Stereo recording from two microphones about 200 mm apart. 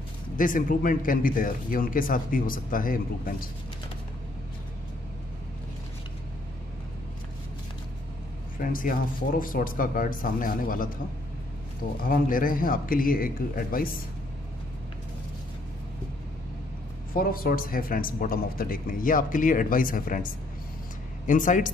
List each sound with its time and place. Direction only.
0.4 s a man's voice: 45° left (ahead or behind)
8.5 s a man's voice: 45° left (ahead or behind)
12.0 s a man's voice: 45° left (ahead or behind)
17.1 s a man's voice: 45° left (ahead or behind)
21.3 s speech: 40° left (ahead or behind)